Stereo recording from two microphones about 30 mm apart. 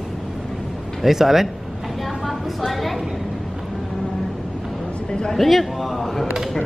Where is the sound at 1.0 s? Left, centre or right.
Centre.